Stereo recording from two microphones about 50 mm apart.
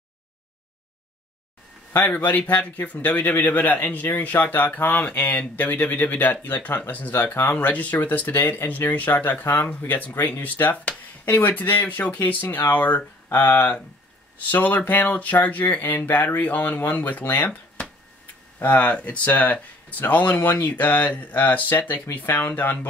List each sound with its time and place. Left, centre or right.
1.9 s a man's voice: left
12.0 s a man's voice: left
18.6 s a man's voice: left